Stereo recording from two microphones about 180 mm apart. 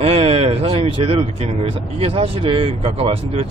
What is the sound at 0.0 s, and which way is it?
Speech, 35° right (ahead or behind).